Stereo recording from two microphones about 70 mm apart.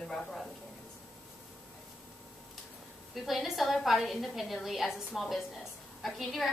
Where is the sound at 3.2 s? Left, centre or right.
Centre.